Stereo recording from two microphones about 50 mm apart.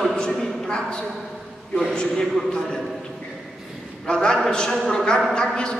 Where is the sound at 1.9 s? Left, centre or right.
Centre.